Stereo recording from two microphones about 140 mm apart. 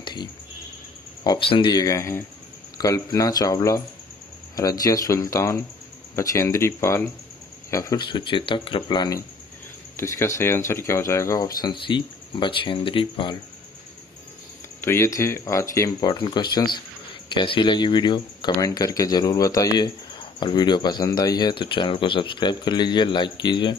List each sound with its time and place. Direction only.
0.0 s music: 30° left (ahead or behind)
1.4 s speech: 40° left (ahead or behind); by 8.0 s 20° left (ahead or behind)
8.0 s speech: 35° left (ahead or behind)
14.8 s speech: 15° left (ahead or behind)
16.1 s speech: 35° left (ahead or behind)